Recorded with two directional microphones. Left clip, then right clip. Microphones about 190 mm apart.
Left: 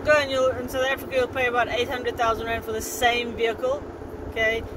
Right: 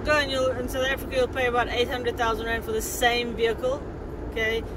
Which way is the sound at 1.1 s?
15° right (ahead or behind).